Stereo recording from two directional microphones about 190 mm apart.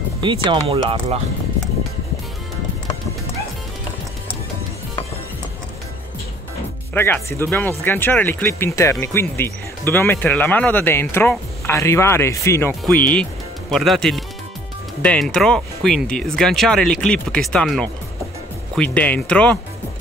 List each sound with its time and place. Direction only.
0.2 s speech: 25° right (ahead or behind)
6.9 s speech: 10° left (ahead or behind)